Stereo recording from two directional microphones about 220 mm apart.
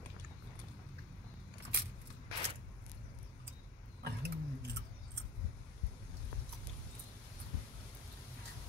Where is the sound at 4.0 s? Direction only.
50° right (ahead or behind).